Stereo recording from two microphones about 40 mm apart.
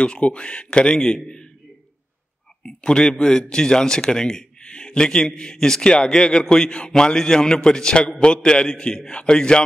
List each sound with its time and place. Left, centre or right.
0.0 s a man's voice: left
2.6 s a man's voice: centre